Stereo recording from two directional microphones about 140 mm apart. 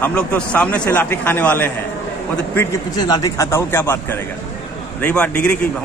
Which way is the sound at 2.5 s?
25° left (ahead or behind).